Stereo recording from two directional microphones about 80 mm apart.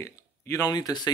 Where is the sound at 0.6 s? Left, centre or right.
Left.